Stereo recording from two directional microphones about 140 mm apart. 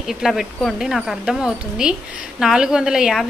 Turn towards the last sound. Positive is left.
turn(degrees=-5)  # may be behind; listen again after turning